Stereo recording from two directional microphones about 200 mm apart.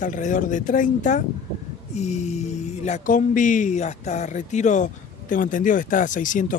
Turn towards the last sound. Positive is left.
turn(degrees=40)  # may be behind; listen again after turning